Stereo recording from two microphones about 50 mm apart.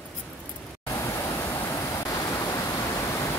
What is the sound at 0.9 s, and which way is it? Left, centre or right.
Pink noise, left.